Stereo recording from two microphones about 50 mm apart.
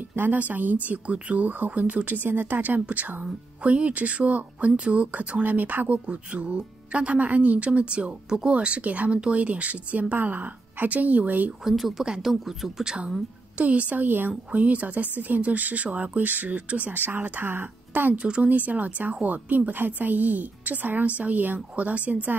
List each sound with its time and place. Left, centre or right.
0.1 s speech: right
2.2 s a woman's voice: right
5.4 s speech: right
6.0 s a woman's voice: right
11.6 s speech: centre
13.6 s speech: right
14.5 s speech: right
18.1 s a woman's voice: right
18.5 s speech: right